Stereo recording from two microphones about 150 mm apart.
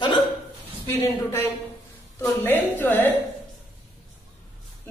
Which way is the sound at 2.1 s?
10° left (ahead or behind).